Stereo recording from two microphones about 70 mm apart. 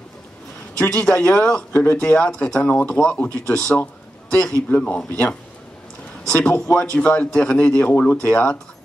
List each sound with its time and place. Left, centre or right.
0.7 s speech: centre
6.2 s a sound: centre
6.5 s speech: left
7.0 s speech: centre